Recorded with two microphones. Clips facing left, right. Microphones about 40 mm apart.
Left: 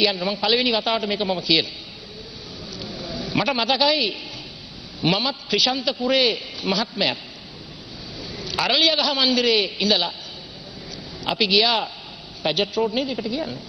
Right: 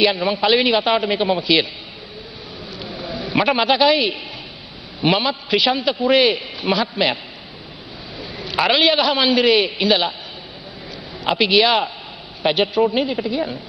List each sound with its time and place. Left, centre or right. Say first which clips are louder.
0.0 s a man's voice: right 4 dB; centre
2.8 s a sound: right 3 dB; centre
5.0 s a man's voice: right 4 dB; centre
8.2 s a man's voice: right 5 dB; centre
11.2 s a man's voice: right 4 dB; centre